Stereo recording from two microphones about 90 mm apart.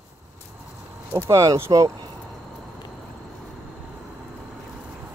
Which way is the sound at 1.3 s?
35° right (ahead or behind).